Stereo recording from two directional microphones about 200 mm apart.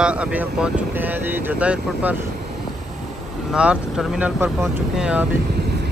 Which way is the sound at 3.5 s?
5° right (ahead or behind).